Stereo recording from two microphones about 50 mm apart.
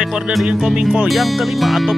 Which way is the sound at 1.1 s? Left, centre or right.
Centre.